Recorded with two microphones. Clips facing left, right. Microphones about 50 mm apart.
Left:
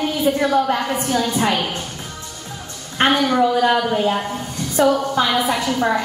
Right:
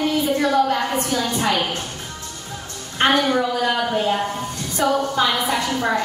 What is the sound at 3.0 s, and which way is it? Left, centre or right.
A woman's voice, centre.